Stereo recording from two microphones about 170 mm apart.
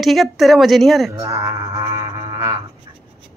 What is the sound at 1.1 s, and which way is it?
Music, 20° right (ahead or behind).